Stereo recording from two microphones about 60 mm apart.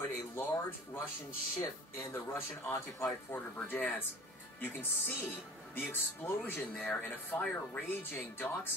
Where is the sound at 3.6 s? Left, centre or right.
Left.